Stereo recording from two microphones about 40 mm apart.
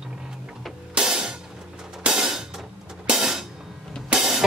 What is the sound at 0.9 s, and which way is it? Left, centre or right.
Music, right.